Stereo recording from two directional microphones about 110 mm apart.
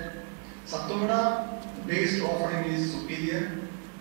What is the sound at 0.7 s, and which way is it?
A man's voice, 20° right (ahead or behind).